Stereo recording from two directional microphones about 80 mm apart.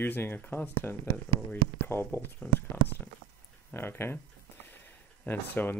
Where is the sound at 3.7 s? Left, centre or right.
Left.